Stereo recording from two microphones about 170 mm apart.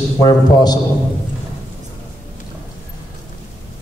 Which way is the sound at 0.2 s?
25° left (ahead or behind).